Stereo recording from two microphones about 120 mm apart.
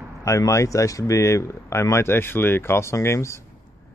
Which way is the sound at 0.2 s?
25° left (ahead or behind).